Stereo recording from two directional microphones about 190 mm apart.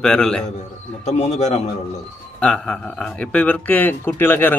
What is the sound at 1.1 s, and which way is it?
Speech, 35° left (ahead or behind).